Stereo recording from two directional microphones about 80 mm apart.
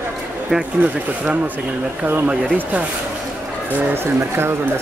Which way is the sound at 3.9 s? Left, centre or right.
Right.